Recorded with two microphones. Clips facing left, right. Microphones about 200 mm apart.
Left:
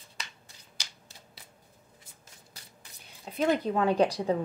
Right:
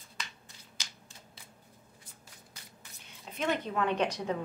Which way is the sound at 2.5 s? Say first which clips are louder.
Even; 35° left (ahead or behind).